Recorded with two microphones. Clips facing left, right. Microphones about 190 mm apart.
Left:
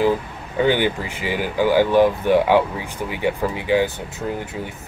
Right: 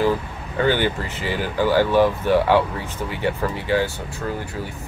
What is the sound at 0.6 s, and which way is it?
Speech, 15° left (ahead or behind).